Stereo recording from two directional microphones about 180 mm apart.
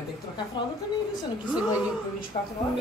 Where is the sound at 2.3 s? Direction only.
35° left (ahead or behind).